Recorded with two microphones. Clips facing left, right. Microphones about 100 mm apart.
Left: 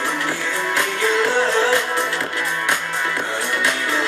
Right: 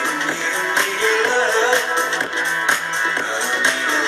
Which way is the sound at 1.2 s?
20° right (ahead or behind).